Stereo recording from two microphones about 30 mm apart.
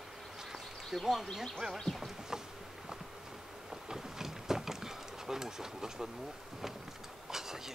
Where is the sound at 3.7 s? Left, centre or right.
Centre.